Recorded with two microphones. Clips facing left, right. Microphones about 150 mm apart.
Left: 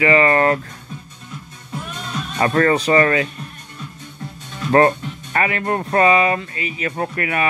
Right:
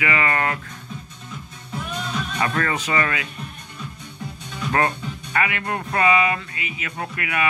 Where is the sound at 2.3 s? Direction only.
40° left (ahead or behind).